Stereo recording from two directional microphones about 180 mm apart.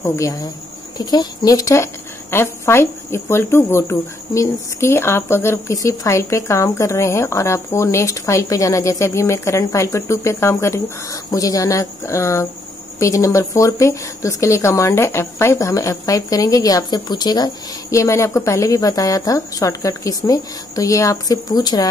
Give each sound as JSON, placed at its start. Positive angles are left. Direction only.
{"t": 0.0, "sound": "a woman's voice", "side_deg": 15}